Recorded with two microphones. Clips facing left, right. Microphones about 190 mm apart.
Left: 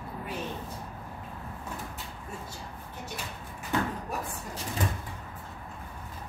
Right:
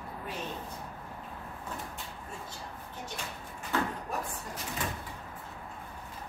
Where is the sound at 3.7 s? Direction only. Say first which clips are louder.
Left 2 dB; 15° left (ahead or behind).